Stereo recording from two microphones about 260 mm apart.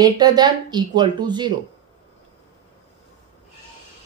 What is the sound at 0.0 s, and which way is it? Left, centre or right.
Speech, centre.